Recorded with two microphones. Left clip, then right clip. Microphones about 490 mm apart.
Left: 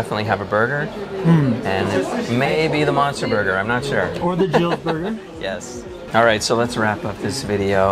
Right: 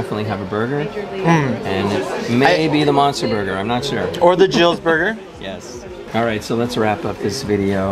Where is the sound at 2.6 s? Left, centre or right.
Left.